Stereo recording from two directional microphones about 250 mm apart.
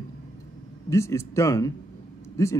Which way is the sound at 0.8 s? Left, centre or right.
Centre.